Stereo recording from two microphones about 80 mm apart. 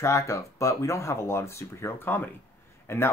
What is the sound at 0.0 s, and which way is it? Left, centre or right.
Speech, left.